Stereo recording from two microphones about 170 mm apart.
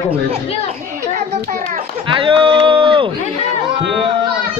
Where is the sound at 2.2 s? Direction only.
30° right (ahead or behind).